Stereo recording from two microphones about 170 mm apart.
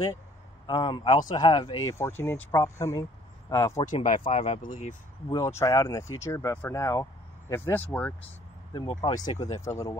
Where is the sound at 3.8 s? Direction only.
45° left (ahead or behind).